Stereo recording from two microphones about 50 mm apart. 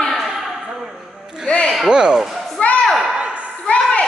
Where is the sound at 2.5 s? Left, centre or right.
Left.